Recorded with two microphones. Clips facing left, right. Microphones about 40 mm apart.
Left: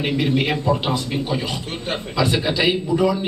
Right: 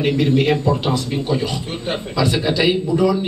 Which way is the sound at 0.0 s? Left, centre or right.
Centre.